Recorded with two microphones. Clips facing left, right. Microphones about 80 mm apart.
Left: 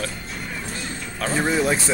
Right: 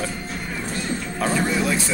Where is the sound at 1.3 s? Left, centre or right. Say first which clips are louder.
Left 2 dB; left.